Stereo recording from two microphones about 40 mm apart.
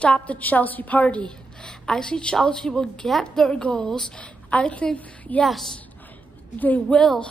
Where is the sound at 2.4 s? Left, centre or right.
Centre.